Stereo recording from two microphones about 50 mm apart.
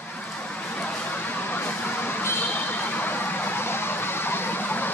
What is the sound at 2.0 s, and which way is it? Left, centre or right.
Vehicle, left.